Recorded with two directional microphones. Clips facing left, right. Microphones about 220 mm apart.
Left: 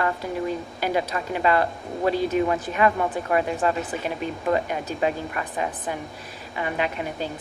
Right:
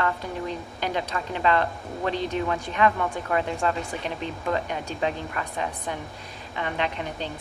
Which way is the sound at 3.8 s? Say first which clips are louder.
Left 3 dB; 5° left (ahead or behind).